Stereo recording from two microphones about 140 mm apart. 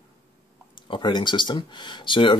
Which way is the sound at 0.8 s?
35° left (ahead or behind).